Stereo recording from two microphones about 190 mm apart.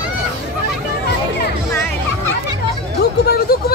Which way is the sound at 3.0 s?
55° left (ahead or behind).